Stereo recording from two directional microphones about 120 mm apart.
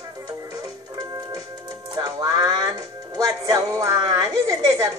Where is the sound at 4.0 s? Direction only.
35° right (ahead or behind).